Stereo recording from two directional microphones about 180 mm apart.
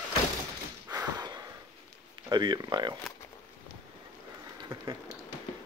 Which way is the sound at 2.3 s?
25° right (ahead or behind).